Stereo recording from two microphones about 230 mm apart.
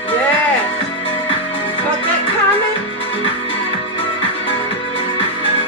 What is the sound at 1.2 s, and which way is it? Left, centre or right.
Music, left.